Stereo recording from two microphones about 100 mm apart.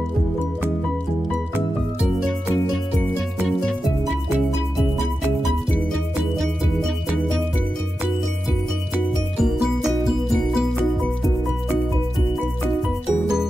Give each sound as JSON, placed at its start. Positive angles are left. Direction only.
{"t": 9.4, "sound": "music", "side_deg": -5}